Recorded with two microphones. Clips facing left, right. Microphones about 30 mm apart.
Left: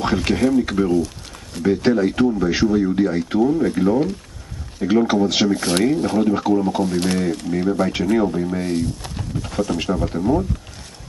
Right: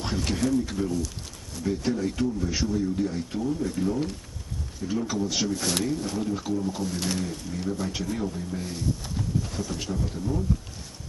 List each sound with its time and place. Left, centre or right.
0.0 s speech: left
0.3 s speech: left
0.6 s speech: left
5.6 s speech: left
5.9 s speech: left
7.2 s speech: left
8.7 s speech: left
9.4 s speech: left